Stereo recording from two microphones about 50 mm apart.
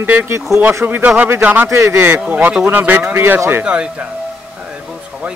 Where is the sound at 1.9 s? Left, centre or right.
Right.